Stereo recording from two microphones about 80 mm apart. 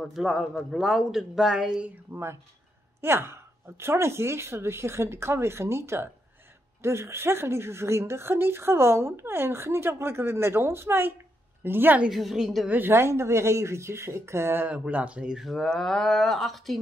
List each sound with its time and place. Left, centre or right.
0.0 s speech: centre
3.0 s a woman's voice: right
12.1 s speech: centre
12.6 s speech: right
14.7 s speech: centre